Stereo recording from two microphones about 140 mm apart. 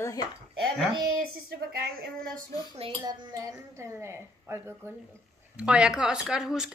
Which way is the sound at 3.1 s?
25° right (ahead or behind).